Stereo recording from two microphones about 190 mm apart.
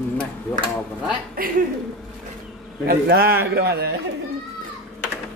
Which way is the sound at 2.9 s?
55° right (ahead or behind).